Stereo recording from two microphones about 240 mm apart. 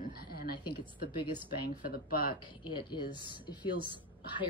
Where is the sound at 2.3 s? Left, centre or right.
Centre.